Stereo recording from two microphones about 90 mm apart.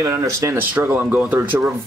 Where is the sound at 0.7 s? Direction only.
20° right (ahead or behind).